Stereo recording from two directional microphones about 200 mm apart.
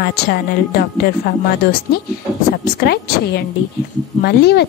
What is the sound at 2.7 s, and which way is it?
A woman's voice, 55° left (ahead or behind).